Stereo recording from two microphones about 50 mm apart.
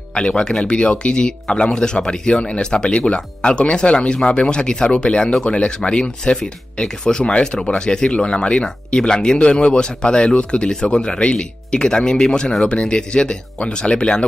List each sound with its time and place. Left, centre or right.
0.1 s speech: centre